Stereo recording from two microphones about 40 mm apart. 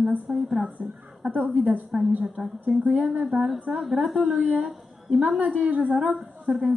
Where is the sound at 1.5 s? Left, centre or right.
Right.